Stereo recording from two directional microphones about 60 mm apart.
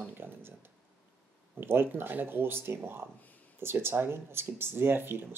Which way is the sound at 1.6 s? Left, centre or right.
Right.